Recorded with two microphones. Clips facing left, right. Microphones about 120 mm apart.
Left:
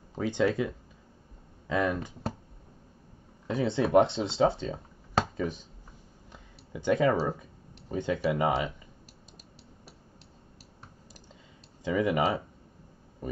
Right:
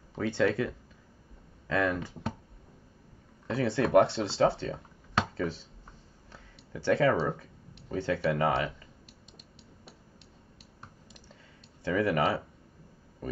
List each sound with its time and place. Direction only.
0.1 s speech: 15° left (ahead or behind)
3.4 s speech: 20° left (ahead or behind)
6.3 s a sound: 15° left (ahead or behind)
7.9 s speech: 15° left (ahead or behind)
11.8 s speech: 15° left (ahead or behind)